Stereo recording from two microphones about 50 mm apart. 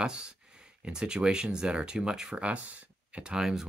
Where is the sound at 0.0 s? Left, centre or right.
Centre.